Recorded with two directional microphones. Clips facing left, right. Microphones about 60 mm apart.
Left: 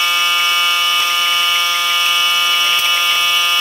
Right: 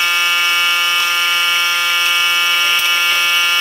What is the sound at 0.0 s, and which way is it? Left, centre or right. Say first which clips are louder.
Buzzer: even; right.